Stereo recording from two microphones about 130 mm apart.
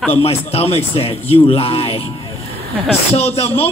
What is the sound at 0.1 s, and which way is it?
Speech, 50° left (ahead or behind).